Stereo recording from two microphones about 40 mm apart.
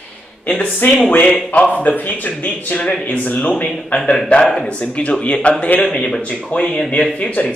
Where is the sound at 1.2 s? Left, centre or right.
Left.